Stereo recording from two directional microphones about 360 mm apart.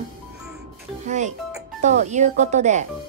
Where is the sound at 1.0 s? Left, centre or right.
Centre.